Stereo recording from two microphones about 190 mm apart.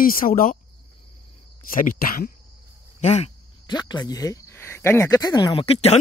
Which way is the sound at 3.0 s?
35° left (ahead or behind).